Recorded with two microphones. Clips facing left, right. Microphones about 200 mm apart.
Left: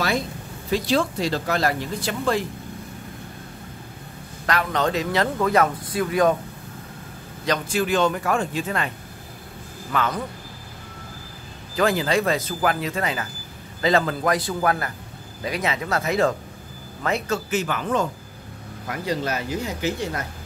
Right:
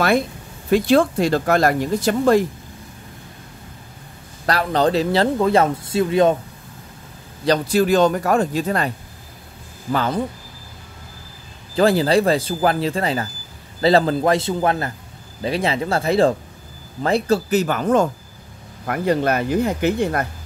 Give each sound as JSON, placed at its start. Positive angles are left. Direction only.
{"t": 0.7, "sound": "speech", "side_deg": -55}
{"t": 4.5, "sound": "a man's voice", "side_deg": -35}
{"t": 7.4, "sound": "speech", "side_deg": -35}
{"t": 9.9, "sound": "speech", "side_deg": -30}
{"t": 11.7, "sound": "a man's voice", "side_deg": -35}
{"t": 18.9, "sound": "speech", "side_deg": -55}